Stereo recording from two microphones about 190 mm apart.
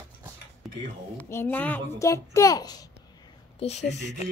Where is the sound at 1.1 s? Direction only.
10° left (ahead or behind).